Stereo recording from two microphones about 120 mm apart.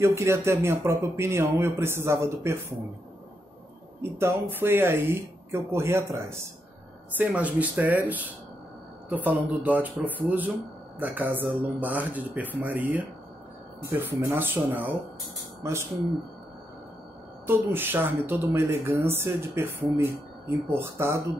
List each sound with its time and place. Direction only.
0.0 s speech: 25° right (ahead or behind)
4.0 s speech: 20° right (ahead or behind)
7.2 s speech: 10° right (ahead or behind)
14.2 s speech: 15° right (ahead or behind)
17.5 s speech: 15° right (ahead or behind)